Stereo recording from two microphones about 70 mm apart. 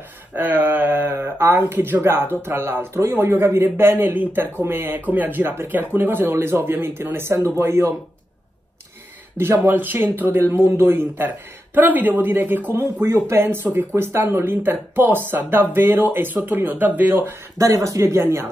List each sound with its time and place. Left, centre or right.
0.3 s speech: right
9.4 s speech: right